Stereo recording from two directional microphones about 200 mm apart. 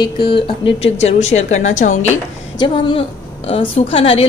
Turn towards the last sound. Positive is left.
turn(degrees=30)  # may be behind; listen again after turning